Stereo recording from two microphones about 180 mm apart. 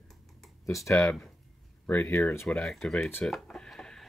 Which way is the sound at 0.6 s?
15° left (ahead or behind).